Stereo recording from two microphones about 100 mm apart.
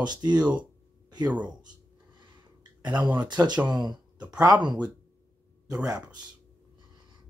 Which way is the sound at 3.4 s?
30° right (ahead or behind).